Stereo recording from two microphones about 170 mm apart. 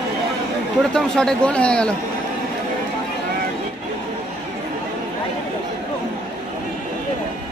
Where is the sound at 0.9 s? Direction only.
5° left (ahead or behind).